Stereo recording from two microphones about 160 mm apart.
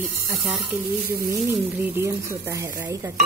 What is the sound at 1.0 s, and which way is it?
Sizzle, 70° right (ahead or behind).